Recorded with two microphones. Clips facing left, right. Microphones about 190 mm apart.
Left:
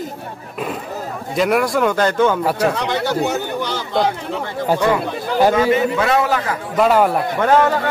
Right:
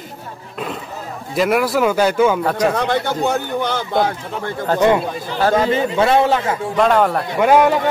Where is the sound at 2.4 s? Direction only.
5° left (ahead or behind).